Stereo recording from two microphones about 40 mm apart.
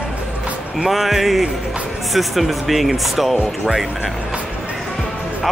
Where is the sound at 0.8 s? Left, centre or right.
Centre.